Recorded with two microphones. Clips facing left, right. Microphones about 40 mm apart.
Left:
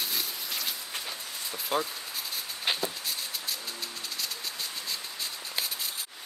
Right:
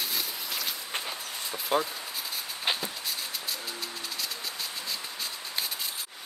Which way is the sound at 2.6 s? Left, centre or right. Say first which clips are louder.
Even; centre.